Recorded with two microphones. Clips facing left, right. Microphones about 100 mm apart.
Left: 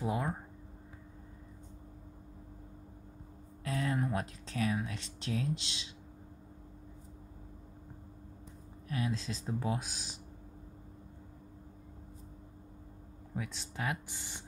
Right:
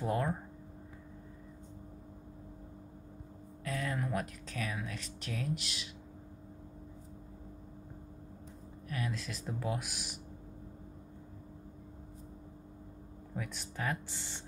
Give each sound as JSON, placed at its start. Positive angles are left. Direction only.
{"t": 0.0, "sound": "speech", "side_deg": 10}
{"t": 3.6, "sound": "speech", "side_deg": 30}
{"t": 8.8, "sound": "speech", "side_deg": 25}
{"t": 13.4, "sound": "speech", "side_deg": 15}
{"t": 14.0, "sound": "speech", "side_deg": -20}